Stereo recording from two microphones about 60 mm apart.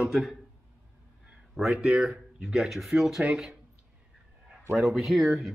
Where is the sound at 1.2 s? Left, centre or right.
Right.